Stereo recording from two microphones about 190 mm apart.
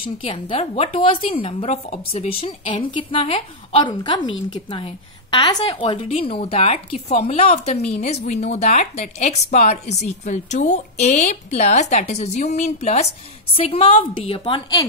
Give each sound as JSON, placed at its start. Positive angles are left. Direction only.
{"t": 0.0, "sound": "a woman's voice", "side_deg": 30}